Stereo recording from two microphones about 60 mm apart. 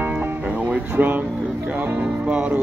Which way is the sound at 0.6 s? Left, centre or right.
Centre.